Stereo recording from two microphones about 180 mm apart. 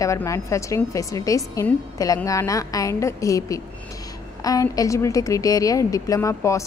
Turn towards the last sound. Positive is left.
turn(degrees=15)  # may be behind; listen again after turning